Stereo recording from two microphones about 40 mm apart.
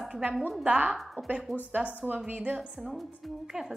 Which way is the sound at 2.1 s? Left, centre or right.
Right.